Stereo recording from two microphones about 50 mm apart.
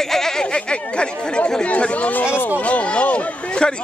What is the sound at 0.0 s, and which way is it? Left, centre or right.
Speech, centre.